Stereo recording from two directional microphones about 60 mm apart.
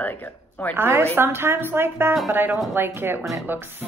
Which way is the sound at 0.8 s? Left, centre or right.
Right.